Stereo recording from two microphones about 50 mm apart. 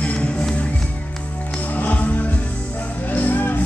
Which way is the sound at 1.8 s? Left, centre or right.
Left.